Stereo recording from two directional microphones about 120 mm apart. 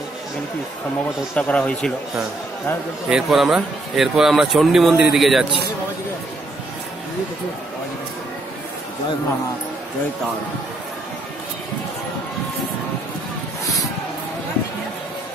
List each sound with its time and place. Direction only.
1.3 s speech: 10° left (ahead or behind)